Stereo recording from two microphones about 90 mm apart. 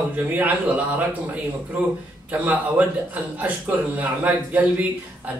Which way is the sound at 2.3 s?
20° right (ahead or behind).